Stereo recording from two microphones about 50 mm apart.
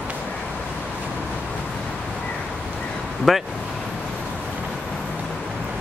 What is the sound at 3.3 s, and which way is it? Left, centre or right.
Speech, centre.